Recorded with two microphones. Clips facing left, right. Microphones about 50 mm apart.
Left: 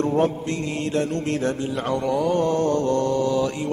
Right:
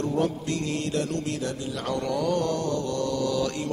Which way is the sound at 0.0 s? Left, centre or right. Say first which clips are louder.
Left 5 dB; left.